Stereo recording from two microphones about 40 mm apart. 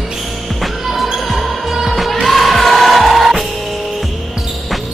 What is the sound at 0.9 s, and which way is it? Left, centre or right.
Basketball bounce, centre.